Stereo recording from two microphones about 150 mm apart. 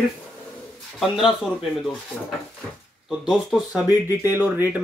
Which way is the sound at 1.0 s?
Centre (ahead or behind).